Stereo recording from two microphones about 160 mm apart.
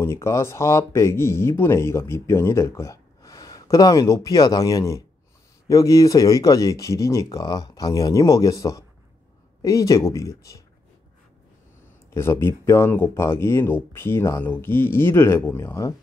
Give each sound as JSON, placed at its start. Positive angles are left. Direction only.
{"t": 0.0, "sound": "speech", "side_deg": 15}
{"t": 12.1, "sound": "speech", "side_deg": 15}